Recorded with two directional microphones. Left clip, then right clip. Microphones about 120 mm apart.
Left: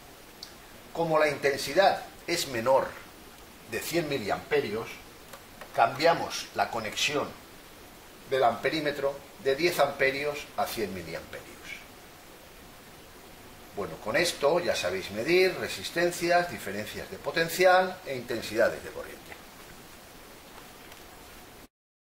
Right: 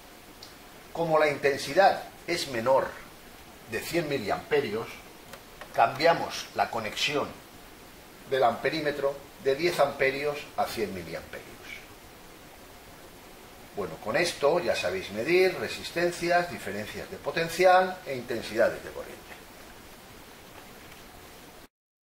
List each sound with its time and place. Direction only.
0.9 s speech: 20° left (ahead or behind)
6.1 s speech: 15° left (ahead or behind)
8.3 s speech: 15° left (ahead or behind)
13.7 s speech: 20° left (ahead or behind)